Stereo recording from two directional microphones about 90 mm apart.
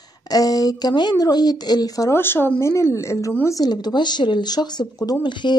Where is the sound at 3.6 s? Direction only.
50° left (ahead or behind).